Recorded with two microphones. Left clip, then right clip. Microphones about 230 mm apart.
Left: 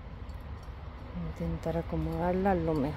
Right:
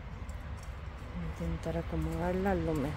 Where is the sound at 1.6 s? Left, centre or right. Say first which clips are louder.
Left 4 dB; centre.